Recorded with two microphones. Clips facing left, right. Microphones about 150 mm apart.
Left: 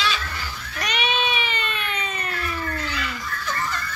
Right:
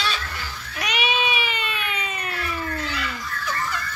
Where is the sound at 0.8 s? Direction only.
5° right (ahead or behind).